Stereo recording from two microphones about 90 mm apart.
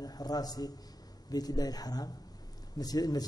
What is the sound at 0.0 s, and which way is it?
A man's voice, 45° left (ahead or behind).